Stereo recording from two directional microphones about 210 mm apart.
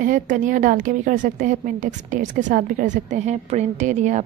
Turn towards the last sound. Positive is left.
turn(degrees=-35)  # may be behind; listen again after turning